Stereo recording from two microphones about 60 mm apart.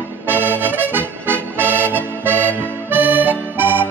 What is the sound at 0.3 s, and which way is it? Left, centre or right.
Music, right.